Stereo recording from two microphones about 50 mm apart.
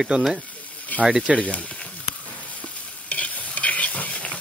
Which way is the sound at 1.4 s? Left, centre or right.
Left.